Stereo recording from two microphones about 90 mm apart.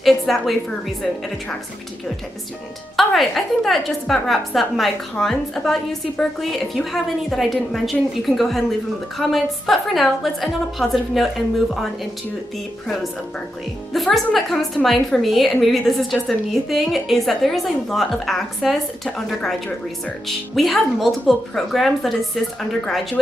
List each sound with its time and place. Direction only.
0.0 s a woman's voice: centre (ahead or behind)
3.0 s a woman's voice: centre (ahead or behind)